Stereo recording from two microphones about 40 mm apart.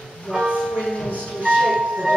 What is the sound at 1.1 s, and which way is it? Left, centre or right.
Music, right.